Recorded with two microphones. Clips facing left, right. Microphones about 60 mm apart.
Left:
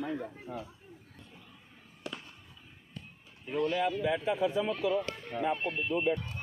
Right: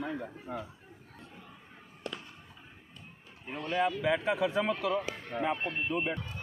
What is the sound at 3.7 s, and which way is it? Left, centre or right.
A man's voice, right.